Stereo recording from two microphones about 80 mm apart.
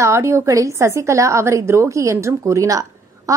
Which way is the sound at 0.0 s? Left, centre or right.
Right.